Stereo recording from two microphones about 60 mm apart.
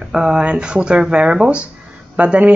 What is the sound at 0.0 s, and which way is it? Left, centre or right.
Speech, centre.